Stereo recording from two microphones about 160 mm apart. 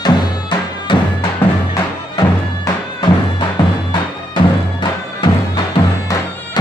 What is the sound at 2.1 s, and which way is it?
Music, 25° left (ahead or behind).